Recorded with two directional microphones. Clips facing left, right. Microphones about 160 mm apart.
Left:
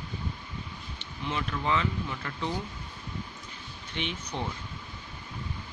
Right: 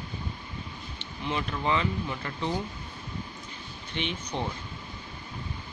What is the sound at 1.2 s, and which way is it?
Speech, 10° right (ahead or behind).